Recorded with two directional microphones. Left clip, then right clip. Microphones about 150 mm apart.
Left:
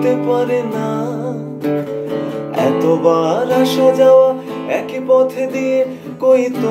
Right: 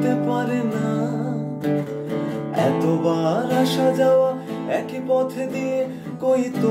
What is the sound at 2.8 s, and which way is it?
Music, 5° right (ahead or behind).